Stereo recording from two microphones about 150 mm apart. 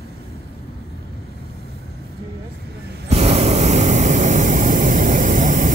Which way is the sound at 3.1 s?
50° right (ahead or behind).